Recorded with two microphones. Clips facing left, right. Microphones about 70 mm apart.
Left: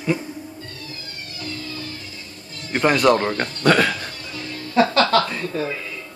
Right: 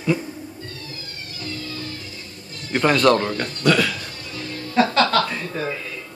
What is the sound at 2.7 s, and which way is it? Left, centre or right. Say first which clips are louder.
Speech: even; centre.